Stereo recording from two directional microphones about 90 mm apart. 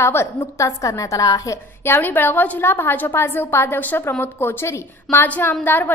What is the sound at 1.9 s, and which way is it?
A woman's voice, 20° left (ahead or behind).